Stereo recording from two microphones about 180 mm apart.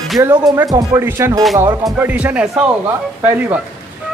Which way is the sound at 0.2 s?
20° right (ahead or behind).